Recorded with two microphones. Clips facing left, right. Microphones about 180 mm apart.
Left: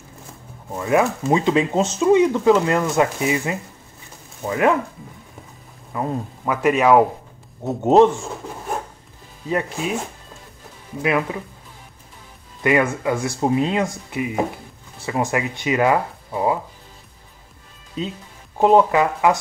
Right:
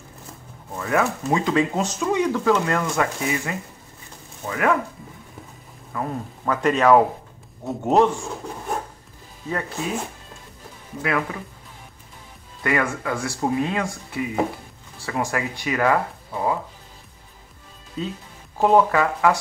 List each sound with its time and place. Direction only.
0.7 s speech: 20° left (ahead or behind)
5.9 s speech: 20° left (ahead or behind)
7.6 s speech: 25° left (ahead or behind)
9.5 s speech: 15° left (ahead or behind)
11.0 s speech: 20° left (ahead or behind)
12.6 s speech: 20° left (ahead or behind)
18.0 s speech: 20° left (ahead or behind)